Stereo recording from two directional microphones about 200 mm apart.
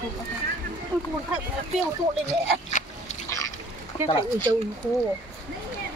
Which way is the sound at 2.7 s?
40° left (ahead or behind).